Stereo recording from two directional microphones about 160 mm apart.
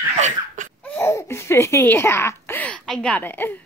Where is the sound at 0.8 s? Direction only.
15° left (ahead or behind).